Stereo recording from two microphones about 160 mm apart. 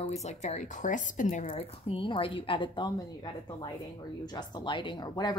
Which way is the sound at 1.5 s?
35° left (ahead or behind).